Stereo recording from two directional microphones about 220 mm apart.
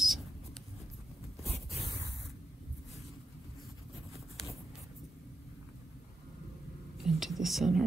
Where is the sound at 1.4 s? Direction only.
30° left (ahead or behind).